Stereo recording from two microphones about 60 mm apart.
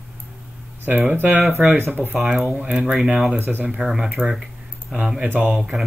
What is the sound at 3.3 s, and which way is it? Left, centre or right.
Speech, right.